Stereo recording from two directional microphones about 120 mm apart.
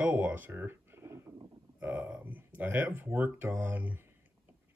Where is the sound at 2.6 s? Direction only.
15° right (ahead or behind).